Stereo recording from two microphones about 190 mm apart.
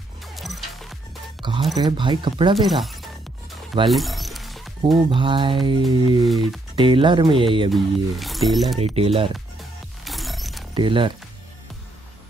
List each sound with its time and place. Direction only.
0.2 s music: centre (ahead or behind)
1.4 s speech: 25° right (ahead or behind)
2.5 s speech: centre (ahead or behind)
3.9 s music: centre (ahead or behind)
5.1 s speech: 25° right (ahead or behind)
6.2 s speech: centre (ahead or behind)
6.8 s speech: 25° right (ahead or behind)
7.7 s speech: centre (ahead or behind)
8.7 s speech: 30° right (ahead or behind)
10.0 s music: centre (ahead or behind)
10.7 s speech: 25° right (ahead or behind)